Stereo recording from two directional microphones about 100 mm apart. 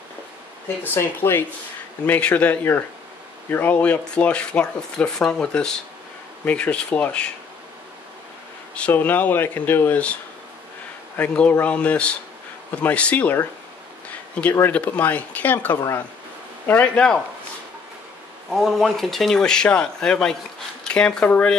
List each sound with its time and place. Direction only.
0.9 s speech: 25° left (ahead or behind)
8.7 s speech: 15° left (ahead or behind)
11.1 s speech: 15° left (ahead or behind)
18.5 s speech: centre (ahead or behind)